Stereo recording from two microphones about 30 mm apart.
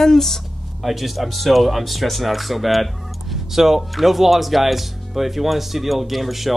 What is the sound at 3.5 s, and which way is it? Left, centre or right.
Speech, centre.